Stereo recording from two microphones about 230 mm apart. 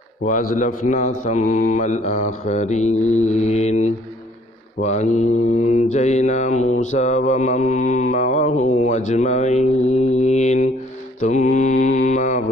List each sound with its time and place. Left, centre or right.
0.2 s speech: left
11.1 s mantra: left